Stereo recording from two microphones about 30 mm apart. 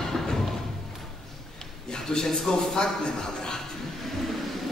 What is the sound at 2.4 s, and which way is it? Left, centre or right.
Speech, left.